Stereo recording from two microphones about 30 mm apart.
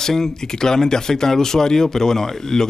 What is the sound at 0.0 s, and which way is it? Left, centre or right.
A man's voice, centre.